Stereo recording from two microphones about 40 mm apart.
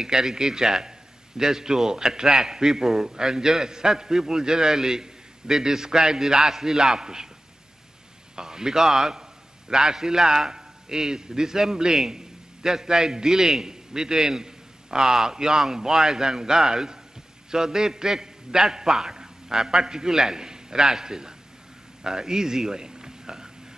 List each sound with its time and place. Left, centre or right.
0.0 s a man's voice: centre
8.4 s a man's voice: centre